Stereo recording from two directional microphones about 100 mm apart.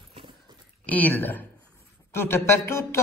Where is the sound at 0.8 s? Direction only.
15° left (ahead or behind).